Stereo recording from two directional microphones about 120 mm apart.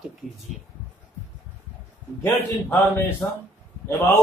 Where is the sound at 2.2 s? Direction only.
20° left (ahead or behind).